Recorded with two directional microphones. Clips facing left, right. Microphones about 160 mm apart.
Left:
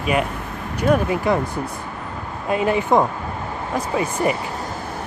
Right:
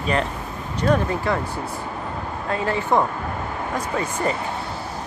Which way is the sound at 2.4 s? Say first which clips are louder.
Left 4 dB; 15° left (ahead or behind).